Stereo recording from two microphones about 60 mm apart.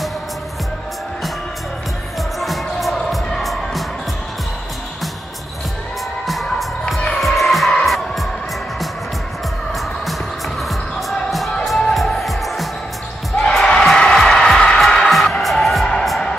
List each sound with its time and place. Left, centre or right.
2.4 s music: centre
6.2 s music: centre
9.7 s music: centre